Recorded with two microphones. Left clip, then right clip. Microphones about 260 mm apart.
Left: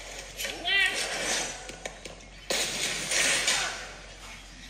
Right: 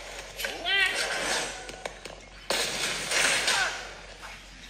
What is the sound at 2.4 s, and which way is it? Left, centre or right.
Smash, right.